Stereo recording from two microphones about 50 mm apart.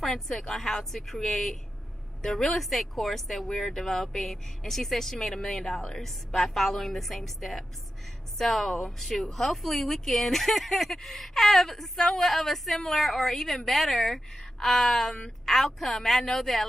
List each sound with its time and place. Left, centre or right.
0.0 s speech: centre